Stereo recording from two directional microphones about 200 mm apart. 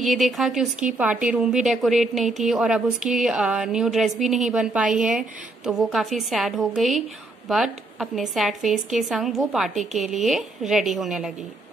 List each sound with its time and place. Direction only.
0.0 s a woman's voice: centre (ahead or behind)